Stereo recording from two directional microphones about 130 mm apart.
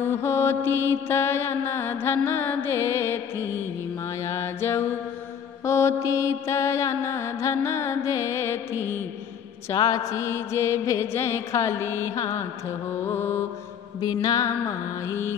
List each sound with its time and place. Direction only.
0.0 s mantra: 20° left (ahead or behind)
12.9 s music: 15° left (ahead or behind)
14.0 s mantra: 30° left (ahead or behind)